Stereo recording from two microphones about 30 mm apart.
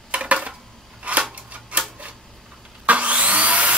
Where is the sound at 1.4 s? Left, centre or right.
Right.